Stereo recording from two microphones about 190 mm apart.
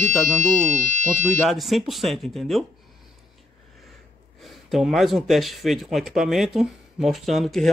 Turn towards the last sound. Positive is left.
turn(degrees=0)  # may be behind; listen again after turning